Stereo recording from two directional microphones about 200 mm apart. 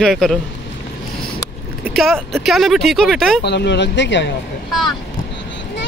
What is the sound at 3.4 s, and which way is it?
Speech, 60° left (ahead or behind).